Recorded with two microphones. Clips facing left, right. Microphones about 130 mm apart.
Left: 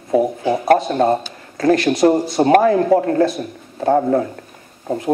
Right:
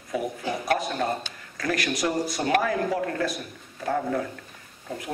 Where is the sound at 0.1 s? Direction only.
30° left (ahead or behind).